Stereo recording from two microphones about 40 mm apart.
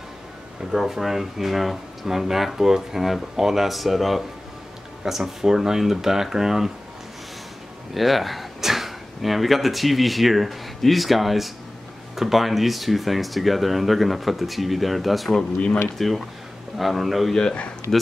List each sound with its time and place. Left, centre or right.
0.7 s speech: centre
7.9 s speech: centre
17.3 s speech: centre